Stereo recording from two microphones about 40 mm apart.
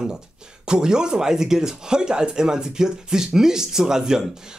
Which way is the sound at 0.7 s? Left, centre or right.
Centre.